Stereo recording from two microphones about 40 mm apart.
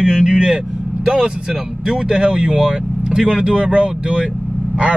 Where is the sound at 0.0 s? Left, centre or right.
Right.